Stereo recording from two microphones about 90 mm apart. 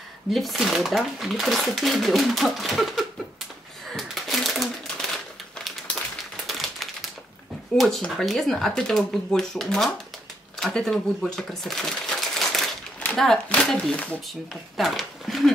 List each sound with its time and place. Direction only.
0.3 s speech: centre (ahead or behind)
3.9 s crumpling: centre (ahead or behind)
6.4 s typewriter: centre (ahead or behind)
7.7 s speech: centre (ahead or behind)
13.0 s a sound: 20° left (ahead or behind)
13.7 s speech: 5° left (ahead or behind)